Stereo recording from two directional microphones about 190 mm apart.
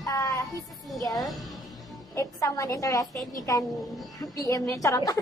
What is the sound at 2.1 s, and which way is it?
A woman's voice, 15° left (ahead or behind).